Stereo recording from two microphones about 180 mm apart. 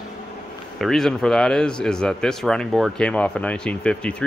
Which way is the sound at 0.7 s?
Centre (ahead or behind).